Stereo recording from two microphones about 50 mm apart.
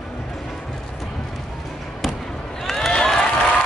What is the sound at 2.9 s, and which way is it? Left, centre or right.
Crowd, centre.